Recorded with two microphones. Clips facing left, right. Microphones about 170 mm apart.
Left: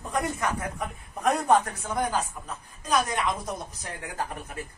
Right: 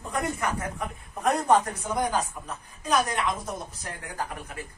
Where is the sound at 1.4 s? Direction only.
10° right (ahead or behind).